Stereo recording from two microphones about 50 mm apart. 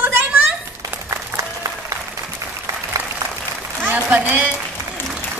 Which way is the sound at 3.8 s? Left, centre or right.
Right.